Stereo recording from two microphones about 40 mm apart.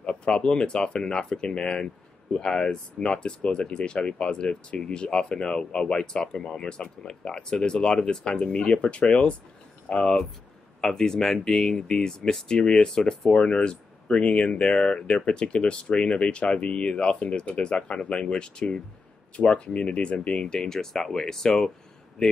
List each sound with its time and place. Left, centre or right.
0.0 s speech: left
10.8 s speech: centre